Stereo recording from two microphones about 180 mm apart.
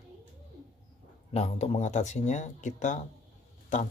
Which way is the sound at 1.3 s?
35° left (ahead or behind).